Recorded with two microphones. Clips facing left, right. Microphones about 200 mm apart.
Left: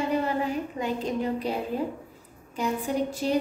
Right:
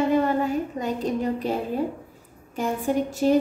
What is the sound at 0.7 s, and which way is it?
A woman's voice, 45° right (ahead or behind).